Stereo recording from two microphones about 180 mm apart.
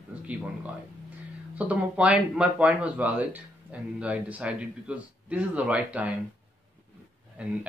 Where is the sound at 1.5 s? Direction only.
10° right (ahead or behind).